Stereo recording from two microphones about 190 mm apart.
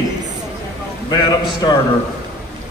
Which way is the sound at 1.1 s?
20° left (ahead or behind).